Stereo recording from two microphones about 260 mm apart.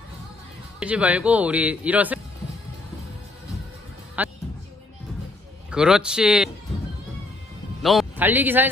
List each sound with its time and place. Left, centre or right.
0.7 s speech: centre
4.2 s music: centre
5.7 s speech: centre
7.8 s a man's voice: centre